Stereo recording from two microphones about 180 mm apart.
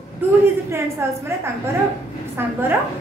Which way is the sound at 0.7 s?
15° right (ahead or behind).